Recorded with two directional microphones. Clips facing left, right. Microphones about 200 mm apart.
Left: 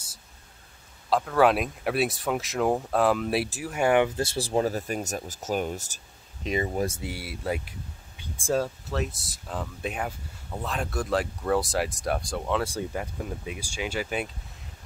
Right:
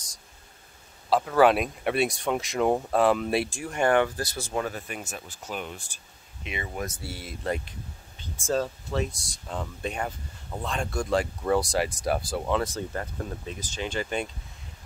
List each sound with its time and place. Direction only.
1.1 s speech: centre (ahead or behind)
4.2 s speech: 30° left (ahead or behind)
7.0 s speech: 15° left (ahead or behind)
12.6 s speech: 10° left (ahead or behind)